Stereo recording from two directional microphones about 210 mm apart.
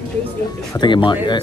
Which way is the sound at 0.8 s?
20° left (ahead or behind).